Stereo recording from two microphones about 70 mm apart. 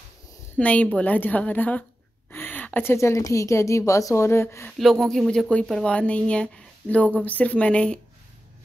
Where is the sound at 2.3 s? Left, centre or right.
Left.